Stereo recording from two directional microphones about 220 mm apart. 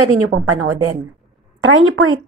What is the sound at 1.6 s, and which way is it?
Speech, 70° right (ahead or behind).